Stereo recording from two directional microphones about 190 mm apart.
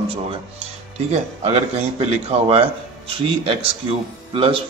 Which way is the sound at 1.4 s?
30° right (ahead or behind).